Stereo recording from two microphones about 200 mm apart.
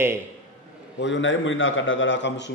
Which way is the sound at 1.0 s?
65° left (ahead or behind).